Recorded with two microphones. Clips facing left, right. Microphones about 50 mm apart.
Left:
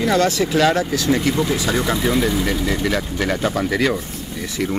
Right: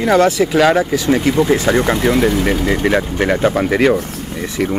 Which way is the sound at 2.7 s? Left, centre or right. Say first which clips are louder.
Right 6 dB; right.